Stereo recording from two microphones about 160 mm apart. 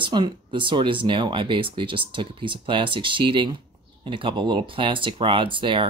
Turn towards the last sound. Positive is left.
turn(degrees=-30)  # may be behind; listen again after turning